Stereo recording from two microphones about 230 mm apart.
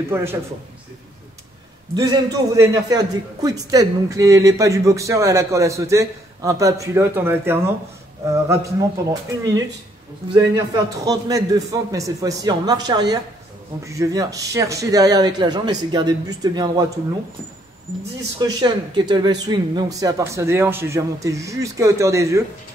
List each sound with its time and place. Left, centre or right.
0.1 s a man's voice: centre
2.0 s a man's voice: centre
18.4 s a man's voice: centre